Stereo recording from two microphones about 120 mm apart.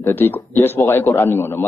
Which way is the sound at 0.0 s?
15° left (ahead or behind).